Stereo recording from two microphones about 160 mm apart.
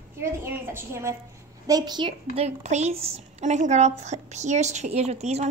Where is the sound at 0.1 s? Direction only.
15° right (ahead or behind).